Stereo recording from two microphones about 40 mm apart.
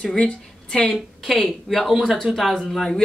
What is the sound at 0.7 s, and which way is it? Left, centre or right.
Speech, left.